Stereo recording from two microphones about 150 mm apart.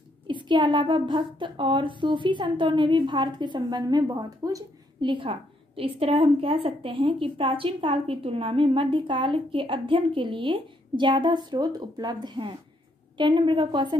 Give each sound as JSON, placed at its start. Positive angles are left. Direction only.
{"t": 0.3, "sound": "a woman's voice", "side_deg": -30}
{"t": 5.1, "sound": "a woman's voice", "side_deg": -35}